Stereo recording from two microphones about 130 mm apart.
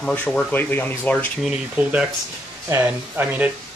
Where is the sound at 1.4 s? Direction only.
10° right (ahead or behind).